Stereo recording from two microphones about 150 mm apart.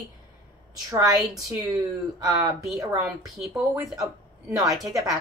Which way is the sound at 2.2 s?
25° right (ahead or behind).